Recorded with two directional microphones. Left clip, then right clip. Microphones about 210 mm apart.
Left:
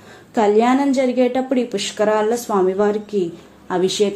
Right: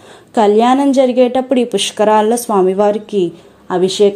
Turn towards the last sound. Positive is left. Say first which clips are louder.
# right 6 dB
turn(degrees=-35)  # may be behind; listen again after turning